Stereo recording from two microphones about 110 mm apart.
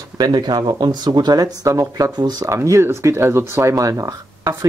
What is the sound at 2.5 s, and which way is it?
Speech, 25° right (ahead or behind).